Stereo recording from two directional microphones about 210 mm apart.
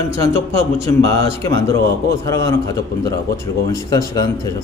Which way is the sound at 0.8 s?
15° left (ahead or behind).